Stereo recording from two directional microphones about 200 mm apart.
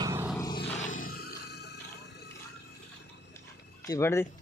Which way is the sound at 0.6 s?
35° left (ahead or behind).